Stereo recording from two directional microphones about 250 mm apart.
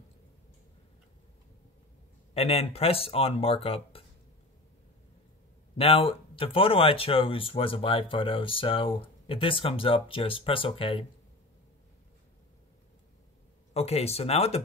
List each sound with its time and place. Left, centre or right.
2.3 s speech: left
5.8 s speech: left
13.7 s speech: left